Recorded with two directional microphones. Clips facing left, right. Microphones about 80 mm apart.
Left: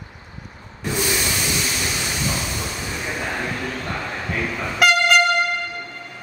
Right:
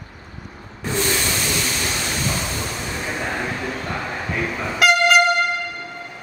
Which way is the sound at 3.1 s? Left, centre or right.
Centre.